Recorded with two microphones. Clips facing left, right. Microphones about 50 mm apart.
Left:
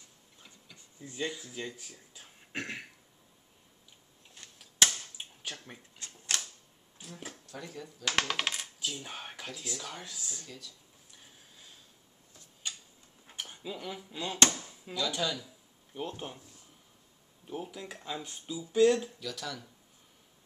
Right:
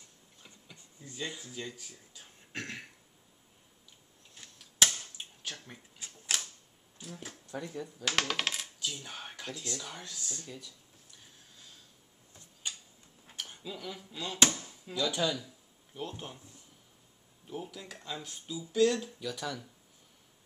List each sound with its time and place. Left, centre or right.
1.0 s speech: centre
2.1 s throat clearing: centre
4.4 s a sound: centre
4.8 s a sound: centre
5.9 s typewriter: centre
7.0 s speech: centre
7.4 s speech: centre
8.1 s speech: centre
10.4 s speech: centre
13.4 s speech: centre
15.0 s speech: centre
15.9 s speech: centre
17.5 s speech: centre
19.1 s speech: centre